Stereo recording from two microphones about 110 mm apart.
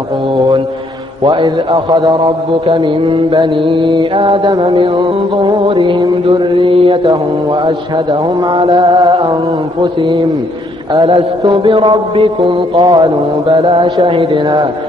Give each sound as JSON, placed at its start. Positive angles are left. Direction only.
{"t": 2.2, "sound": "mantra", "side_deg": -50}
{"t": 4.9, "sound": "mantra", "side_deg": -45}
{"t": 8.7, "sound": "music", "side_deg": -30}
{"t": 9.8, "sound": "mantra", "side_deg": -45}
{"t": 12.7, "sound": "mantra", "side_deg": -40}